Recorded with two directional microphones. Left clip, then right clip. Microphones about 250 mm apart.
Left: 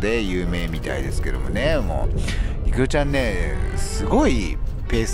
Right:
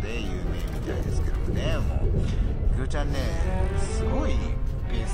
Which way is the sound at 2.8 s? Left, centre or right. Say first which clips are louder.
Left 12 dB; left.